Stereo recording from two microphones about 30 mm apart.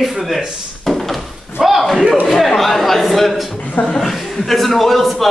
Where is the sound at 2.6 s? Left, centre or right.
Centre.